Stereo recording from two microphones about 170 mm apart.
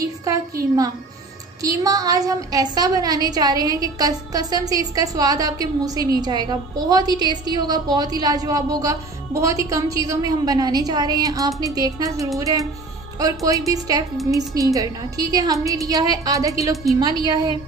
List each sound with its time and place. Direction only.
0.0 s a woman's voice: 20° right (ahead or behind)
1.6 s a woman's voice: 20° right (ahead or behind)